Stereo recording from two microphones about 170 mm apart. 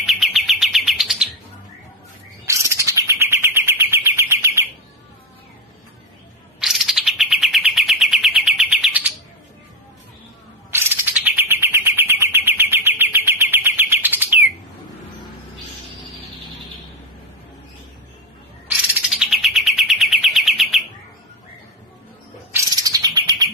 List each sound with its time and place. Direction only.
0.0 s bird: centre (ahead or behind)
2.4 s bird: 15° right (ahead or behind)
6.6 s bird: centre (ahead or behind)
10.7 s bird: 15° right (ahead or behind)
18.9 s bird: 5° right (ahead or behind)
22.5 s bird: 20° right (ahead or behind)